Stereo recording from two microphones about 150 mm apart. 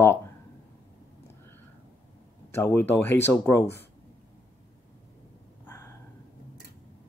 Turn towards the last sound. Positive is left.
turn(degrees=15)  # may be behind; listen again after turning